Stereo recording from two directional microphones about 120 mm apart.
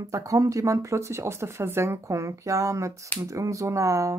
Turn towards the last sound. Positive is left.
turn(degrees=-25)  # may be behind; listen again after turning